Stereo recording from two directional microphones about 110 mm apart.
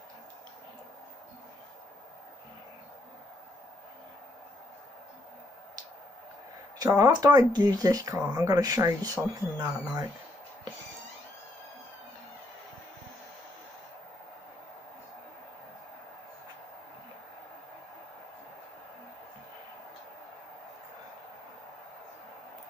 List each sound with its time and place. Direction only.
6.8 s speech: 35° right (ahead or behind)